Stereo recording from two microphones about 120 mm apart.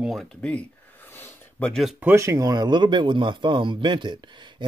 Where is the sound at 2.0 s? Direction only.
20° right (ahead or behind).